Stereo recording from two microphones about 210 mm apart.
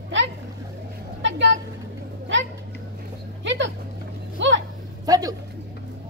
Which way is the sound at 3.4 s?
60° right (ahead or behind).